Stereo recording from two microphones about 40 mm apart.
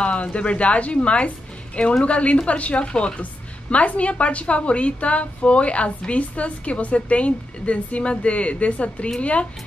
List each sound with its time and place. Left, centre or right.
0.0 s a woman's voice: left